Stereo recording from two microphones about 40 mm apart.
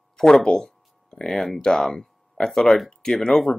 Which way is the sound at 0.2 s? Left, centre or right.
Centre.